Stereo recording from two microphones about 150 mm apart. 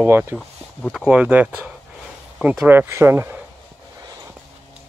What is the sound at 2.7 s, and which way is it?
Speech, 15° right (ahead or behind).